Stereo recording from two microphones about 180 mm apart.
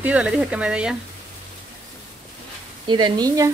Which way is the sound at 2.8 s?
25° right (ahead or behind).